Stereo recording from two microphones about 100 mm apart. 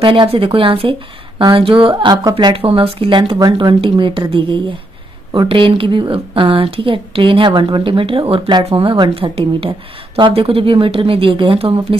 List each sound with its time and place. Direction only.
0.0 s a woman's voice: 60° right (ahead or behind)
3.5 s a woman's voice: 50° right (ahead or behind)
8.3 s speech: 50° right (ahead or behind)
8.6 s a woman's voice: 65° right (ahead or behind)